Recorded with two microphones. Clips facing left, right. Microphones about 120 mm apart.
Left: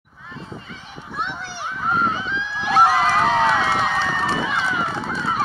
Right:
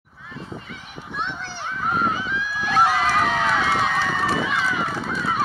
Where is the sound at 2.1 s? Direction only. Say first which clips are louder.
Even; 25° left (ahead or behind).